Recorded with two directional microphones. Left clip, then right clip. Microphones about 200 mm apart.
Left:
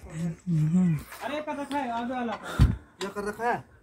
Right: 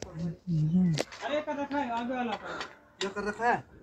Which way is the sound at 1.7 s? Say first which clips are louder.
Left 3 dB; 40° left (ahead or behind).